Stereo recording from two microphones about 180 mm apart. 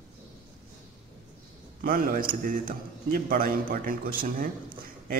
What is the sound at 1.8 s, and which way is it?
A man's voice, 55° right (ahead or behind).